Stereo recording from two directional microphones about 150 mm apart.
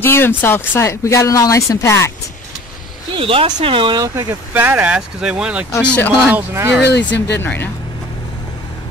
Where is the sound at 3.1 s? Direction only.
35° right (ahead or behind); by 6.7 s 15° right (ahead or behind).